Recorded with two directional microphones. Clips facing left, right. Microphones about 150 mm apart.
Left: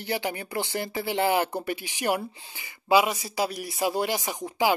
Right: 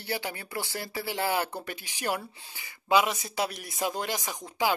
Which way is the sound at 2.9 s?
5° left (ahead or behind).